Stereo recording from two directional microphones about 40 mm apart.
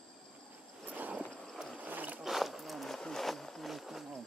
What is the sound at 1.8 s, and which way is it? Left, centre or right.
Boat, right.